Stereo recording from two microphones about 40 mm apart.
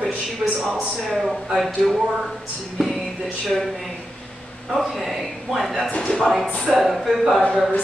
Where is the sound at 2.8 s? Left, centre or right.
Centre.